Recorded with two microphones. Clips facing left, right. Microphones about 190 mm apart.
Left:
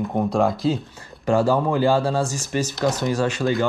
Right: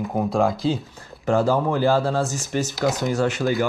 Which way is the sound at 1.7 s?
15° left (ahead or behind).